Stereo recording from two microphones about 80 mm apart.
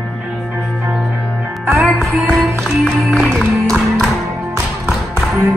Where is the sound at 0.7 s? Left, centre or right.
Centre.